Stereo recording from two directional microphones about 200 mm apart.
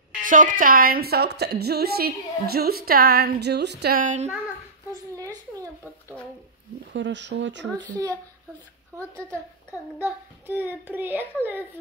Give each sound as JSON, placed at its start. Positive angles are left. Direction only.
{"t": 0.2, "sound": "a woman's voice", "side_deg": -40}
{"t": 5.1, "sound": "a sound", "side_deg": -15}
{"t": 6.9, "sound": "speech", "side_deg": -65}
{"t": 10.4, "sound": "a child's voice", "side_deg": -10}